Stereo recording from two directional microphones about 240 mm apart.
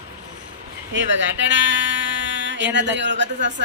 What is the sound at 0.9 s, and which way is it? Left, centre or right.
Speech, right.